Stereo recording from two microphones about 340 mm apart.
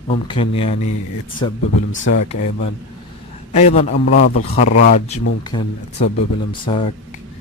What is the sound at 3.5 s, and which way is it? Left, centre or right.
A man's voice, centre.